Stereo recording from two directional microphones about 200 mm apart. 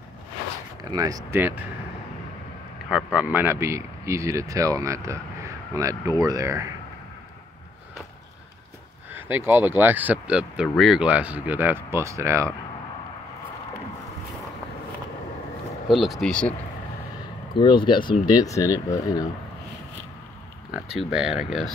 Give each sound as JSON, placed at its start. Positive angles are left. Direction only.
{"t": 0.9, "sound": "speech", "side_deg": -15}
{"t": 2.9, "sound": "speech", "side_deg": -5}
{"t": 9.1, "sound": "speech", "side_deg": -10}
{"t": 15.9, "sound": "speech", "side_deg": 0}
{"t": 17.6, "sound": "speech", "side_deg": 25}
{"t": 20.7, "sound": "speech", "side_deg": -5}